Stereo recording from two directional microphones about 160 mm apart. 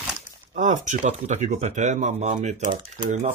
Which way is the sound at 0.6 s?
50° right (ahead or behind).